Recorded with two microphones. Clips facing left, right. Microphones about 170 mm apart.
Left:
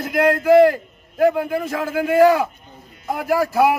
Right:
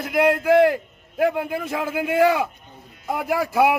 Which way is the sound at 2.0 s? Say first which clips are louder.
Left 5 dB; 40° left (ahead or behind).